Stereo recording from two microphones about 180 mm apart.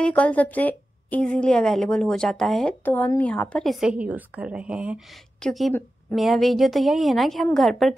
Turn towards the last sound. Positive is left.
turn(degrees=0)  # may be behind; listen again after turning